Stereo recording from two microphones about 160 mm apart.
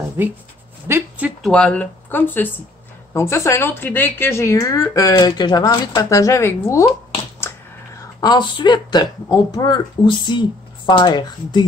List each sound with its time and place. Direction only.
0.2 s speech: 15° right (ahead or behind)
0.8 s a sound: 15° right (ahead or behind)
1.4 s a woman's voice: 5° left (ahead or behind)
8.2 s a woman's voice: 30° left (ahead or behind)